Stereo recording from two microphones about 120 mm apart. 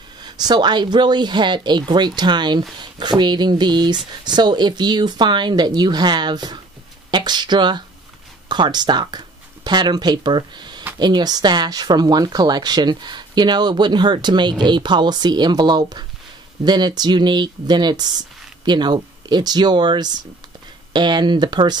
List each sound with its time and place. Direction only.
0.2 s speech: 35° right (ahead or behind)